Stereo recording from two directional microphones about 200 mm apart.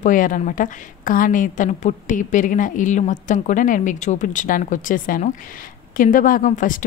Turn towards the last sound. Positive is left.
turn(degrees=40)  # may be behind; listen again after turning